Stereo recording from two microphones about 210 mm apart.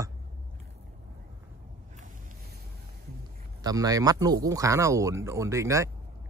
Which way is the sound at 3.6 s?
15° right (ahead or behind).